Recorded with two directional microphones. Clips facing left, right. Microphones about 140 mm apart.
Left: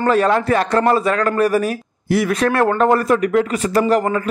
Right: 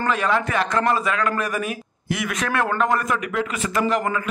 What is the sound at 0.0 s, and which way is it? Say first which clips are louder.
Speech: left 6 dB; 35° left (ahead or behind).